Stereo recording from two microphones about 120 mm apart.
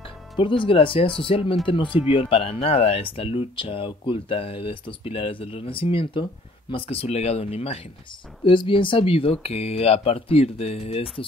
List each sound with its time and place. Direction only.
0.4 s speech: 45° left (ahead or behind)
8.5 s speech: 45° left (ahead or behind)